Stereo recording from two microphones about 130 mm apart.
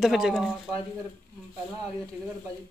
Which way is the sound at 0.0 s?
Centre (ahead or behind).